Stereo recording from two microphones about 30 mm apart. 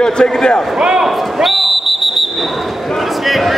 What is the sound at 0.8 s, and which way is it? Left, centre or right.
Speech, right.